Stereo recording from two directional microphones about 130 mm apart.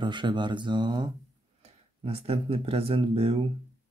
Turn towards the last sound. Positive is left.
turn(degrees=-50)  # may be behind; listen again after turning